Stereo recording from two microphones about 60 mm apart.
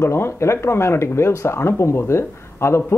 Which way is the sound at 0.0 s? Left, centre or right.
Left.